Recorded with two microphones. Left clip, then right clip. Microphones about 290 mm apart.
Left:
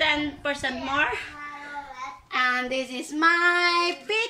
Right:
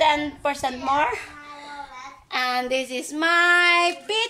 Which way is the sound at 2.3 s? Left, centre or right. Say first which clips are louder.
Right 1 dB; centre.